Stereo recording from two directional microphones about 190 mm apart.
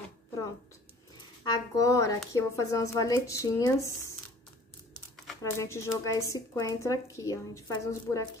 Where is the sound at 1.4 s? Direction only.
20° left (ahead or behind).